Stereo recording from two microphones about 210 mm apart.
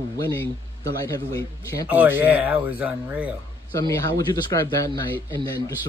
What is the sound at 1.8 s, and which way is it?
Speech, 10° right (ahead or behind).